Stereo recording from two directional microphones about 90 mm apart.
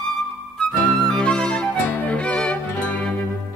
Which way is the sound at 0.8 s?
5° left (ahead or behind).